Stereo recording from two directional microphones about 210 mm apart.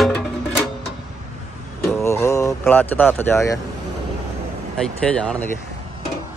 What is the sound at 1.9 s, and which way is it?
Vehicle, 15° left (ahead or behind).